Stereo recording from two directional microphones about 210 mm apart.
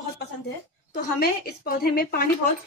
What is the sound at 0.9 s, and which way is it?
A woman's voice, 45° left (ahead or behind).